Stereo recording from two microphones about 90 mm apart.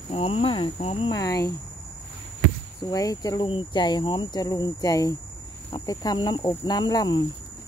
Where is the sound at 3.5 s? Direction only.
65° left (ahead or behind); by 6.2 s 45° left (ahead or behind).